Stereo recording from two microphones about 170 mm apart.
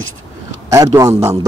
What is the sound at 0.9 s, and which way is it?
Speech, 20° right (ahead or behind).